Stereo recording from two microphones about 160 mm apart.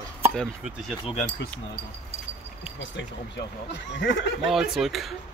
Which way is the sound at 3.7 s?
90° left.